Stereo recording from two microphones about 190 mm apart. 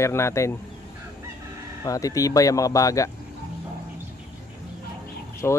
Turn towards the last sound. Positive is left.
turn(degrees=10)  # may be behind; listen again after turning